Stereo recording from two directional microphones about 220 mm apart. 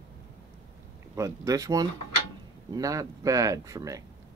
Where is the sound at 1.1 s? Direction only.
15° right (ahead or behind).